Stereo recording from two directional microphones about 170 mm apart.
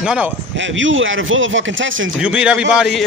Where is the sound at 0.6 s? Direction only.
90° right.